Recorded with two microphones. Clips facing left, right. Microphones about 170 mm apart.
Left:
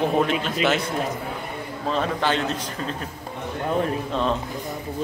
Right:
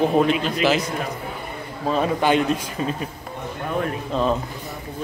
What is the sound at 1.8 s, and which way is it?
A man's voice, 10° right (ahead or behind).